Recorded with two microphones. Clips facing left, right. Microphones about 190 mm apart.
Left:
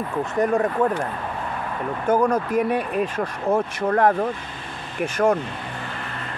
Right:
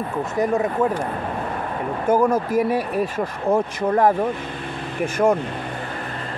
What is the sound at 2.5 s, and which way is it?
Speech, 15° left (ahead or behind).